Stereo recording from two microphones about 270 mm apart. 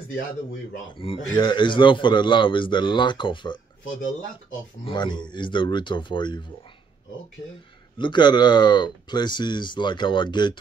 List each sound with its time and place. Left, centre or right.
0.9 s a man's voice: centre
4.8 s speech: centre
8.0 s speech: centre